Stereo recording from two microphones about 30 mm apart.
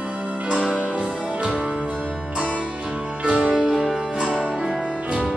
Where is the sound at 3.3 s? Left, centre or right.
Right.